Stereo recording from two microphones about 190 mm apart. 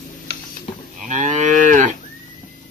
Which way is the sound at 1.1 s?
40° right (ahead or behind).